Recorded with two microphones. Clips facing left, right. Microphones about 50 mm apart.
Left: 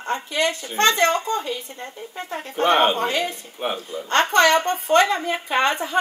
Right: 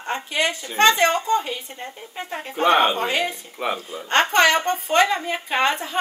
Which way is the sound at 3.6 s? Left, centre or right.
Right.